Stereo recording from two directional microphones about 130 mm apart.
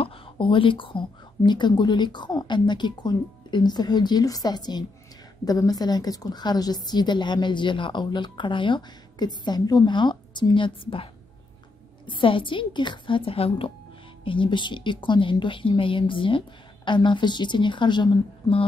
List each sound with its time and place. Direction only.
0.0 s a woman's voice: 45° left (ahead or behind)
12.1 s a woman's voice: 40° left (ahead or behind)